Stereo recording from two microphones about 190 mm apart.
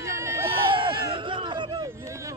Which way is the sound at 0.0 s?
15° right (ahead or behind).